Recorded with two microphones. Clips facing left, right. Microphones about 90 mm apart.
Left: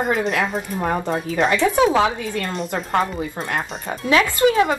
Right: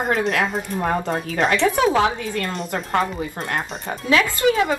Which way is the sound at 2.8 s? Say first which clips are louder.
Left 1 dB; centre (ahead or behind).